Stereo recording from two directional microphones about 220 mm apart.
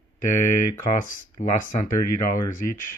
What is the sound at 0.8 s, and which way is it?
Speech, 35° left (ahead or behind).